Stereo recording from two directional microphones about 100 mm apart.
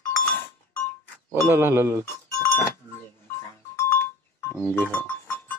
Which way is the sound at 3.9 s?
20° left (ahead or behind).